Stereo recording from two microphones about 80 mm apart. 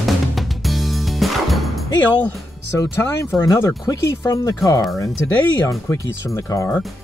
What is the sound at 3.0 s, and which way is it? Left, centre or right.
Speech, left.